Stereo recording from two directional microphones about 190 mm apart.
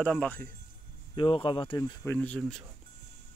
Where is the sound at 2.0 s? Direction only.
5° left (ahead or behind).